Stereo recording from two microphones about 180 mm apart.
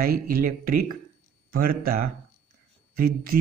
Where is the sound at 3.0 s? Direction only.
55° right (ahead or behind).